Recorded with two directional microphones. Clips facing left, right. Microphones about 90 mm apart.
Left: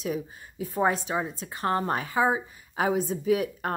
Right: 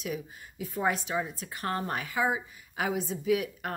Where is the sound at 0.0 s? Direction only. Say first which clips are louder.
Left 5 dB; 35° left (ahead or behind).